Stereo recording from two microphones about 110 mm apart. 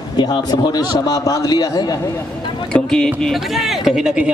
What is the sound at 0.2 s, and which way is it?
A man's voice, 40° left (ahead or behind).